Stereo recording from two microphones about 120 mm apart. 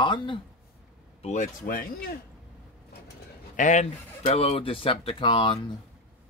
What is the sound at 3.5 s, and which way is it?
Speech, 90° left.